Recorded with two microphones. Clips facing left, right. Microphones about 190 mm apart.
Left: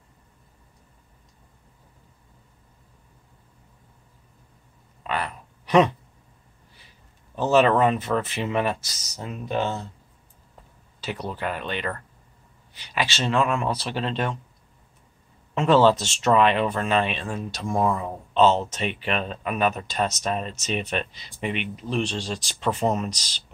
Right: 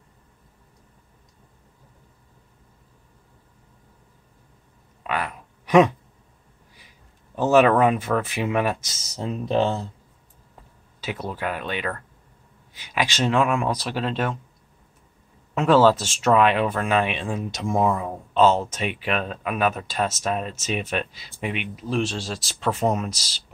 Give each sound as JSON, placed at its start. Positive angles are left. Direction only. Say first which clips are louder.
{"t": 5.0, "sound": "a sound", "louder": "right 1 dB", "side_deg": -10}
{"t": 7.3, "sound": "speech", "louder": "right 2 dB", "side_deg": -10}
{"t": 8.8, "sound": "speech", "louder": "right 6 dB", "side_deg": -25}
{"t": 11.0, "sound": "speech", "louder": "right 1 dB", "side_deg": -5}
{"t": 15.5, "sound": "speech", "louder": "right 1 dB", "side_deg": -5}